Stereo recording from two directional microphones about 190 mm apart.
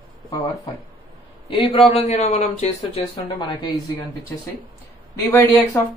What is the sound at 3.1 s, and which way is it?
Speech, 20° left (ahead or behind).